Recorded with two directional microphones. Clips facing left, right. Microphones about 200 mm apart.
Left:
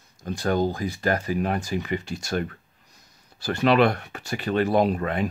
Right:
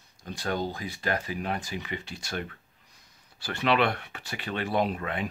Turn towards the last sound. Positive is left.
turn(degrees=40)  # may be behind; listen again after turning